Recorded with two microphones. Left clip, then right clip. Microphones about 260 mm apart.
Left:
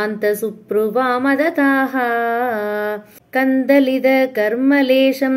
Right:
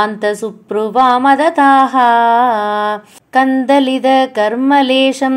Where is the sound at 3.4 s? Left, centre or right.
Right.